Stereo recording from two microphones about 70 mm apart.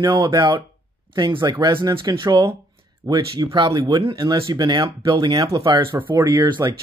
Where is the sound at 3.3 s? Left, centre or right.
Right.